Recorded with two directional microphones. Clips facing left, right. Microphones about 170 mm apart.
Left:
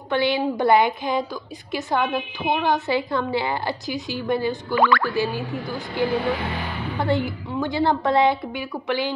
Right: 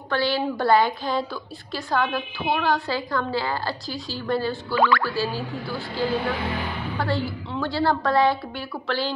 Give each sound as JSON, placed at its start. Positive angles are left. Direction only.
{"t": 0.1, "sound": "a woman's voice", "side_deg": 20}
{"t": 4.7, "sound": "music", "side_deg": 55}
{"t": 5.1, "sound": "a woman's voice", "side_deg": 20}